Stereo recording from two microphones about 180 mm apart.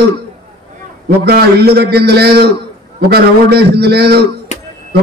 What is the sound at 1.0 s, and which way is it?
A man's voice, 60° right (ahead or behind).